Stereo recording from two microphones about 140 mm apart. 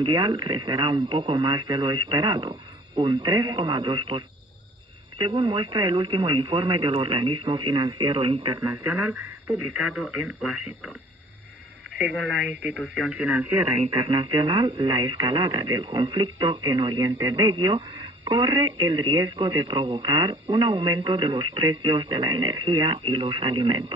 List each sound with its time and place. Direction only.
0.0 s speech: 35° right (ahead or behind)
5.2 s speech: 35° right (ahead or behind)
8.8 s speech: 10° right (ahead or behind)
12.7 s speech: centre (ahead or behind)
13.7 s speech: 40° right (ahead or behind)